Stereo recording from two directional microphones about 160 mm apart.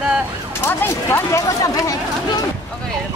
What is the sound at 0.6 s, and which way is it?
Speech, 15° left (ahead or behind).